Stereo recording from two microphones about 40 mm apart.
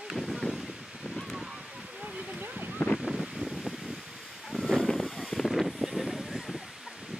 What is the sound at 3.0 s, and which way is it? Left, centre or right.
Waves, centre.